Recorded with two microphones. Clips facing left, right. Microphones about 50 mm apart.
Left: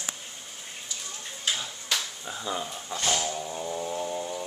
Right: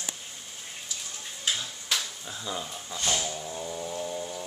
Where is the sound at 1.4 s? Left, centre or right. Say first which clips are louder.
Even; centre.